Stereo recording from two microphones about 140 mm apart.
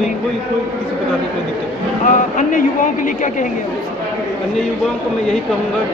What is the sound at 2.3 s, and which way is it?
A woman's voice, 70° left (ahead or behind).